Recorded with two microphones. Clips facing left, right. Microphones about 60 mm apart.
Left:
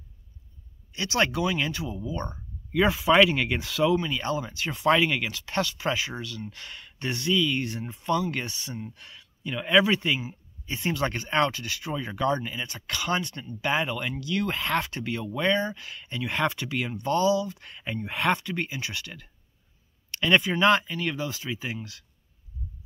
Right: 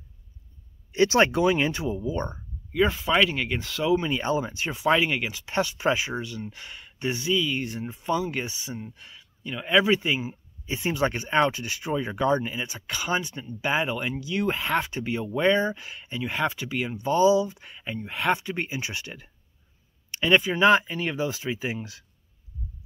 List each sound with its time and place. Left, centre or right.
0.9 s speech: right
2.7 s speech: centre
3.9 s speech: right
4.7 s speech: centre
17.8 s speech: centre
18.3 s speech: centre
20.1 s a sound: centre
20.5 s speech: centre